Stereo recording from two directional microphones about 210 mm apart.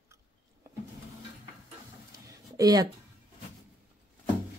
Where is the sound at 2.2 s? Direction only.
15° right (ahead or behind).